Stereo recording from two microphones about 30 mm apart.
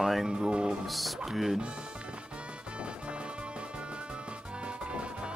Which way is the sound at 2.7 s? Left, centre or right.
Right.